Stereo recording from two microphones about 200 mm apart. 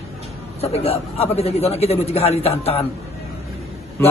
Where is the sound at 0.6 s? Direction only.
30° left (ahead or behind).